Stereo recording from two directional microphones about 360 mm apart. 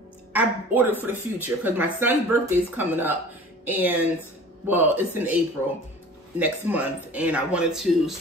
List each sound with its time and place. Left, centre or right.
0.3 s speech: centre
6.3 s speech: centre